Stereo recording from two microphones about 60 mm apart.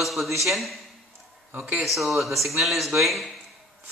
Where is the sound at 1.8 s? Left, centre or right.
Centre.